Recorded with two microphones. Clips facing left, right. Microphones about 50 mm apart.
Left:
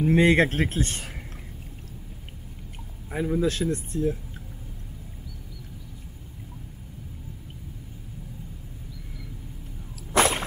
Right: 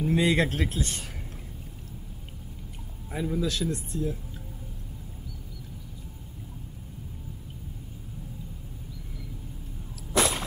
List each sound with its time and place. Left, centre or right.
0.0 s a man's voice: left
3.1 s a man's voice: left
10.1 s a sound: left